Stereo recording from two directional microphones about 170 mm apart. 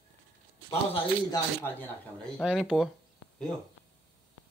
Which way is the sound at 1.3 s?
10° left (ahead or behind).